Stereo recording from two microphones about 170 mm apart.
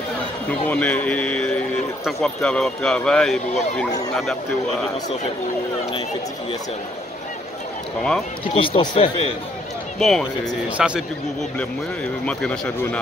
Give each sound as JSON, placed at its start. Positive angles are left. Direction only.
{"t": 0.7, "sound": "a man's voice", "side_deg": 10}
{"t": 8.5, "sound": "speech", "side_deg": 30}
{"t": 9.9, "sound": "speech", "side_deg": 0}
{"t": 11.5, "sound": "a man's voice", "side_deg": 5}